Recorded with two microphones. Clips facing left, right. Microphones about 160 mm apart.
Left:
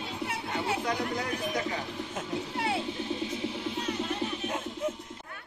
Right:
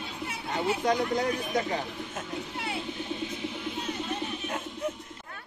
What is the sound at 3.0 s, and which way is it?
Music, 30° left (ahead or behind).